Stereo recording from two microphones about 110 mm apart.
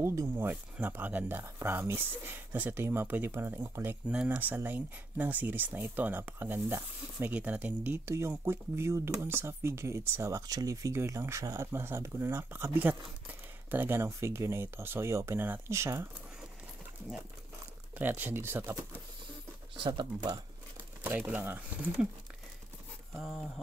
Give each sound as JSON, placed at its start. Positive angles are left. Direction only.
{"t": 0.0, "sound": "speech", "side_deg": -30}
{"t": 0.4, "sound": "speech", "side_deg": -15}
{"t": 4.1, "sound": "speech", "side_deg": -10}
{"t": 17.9, "sound": "speech", "side_deg": -15}
{"t": 19.8, "sound": "speech", "side_deg": -45}
{"t": 21.0, "sound": "speech", "side_deg": -15}